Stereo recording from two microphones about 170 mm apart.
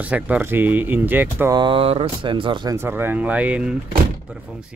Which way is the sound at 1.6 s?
30° right (ahead or behind).